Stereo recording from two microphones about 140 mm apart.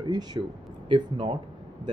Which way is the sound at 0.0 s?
30° right (ahead or behind).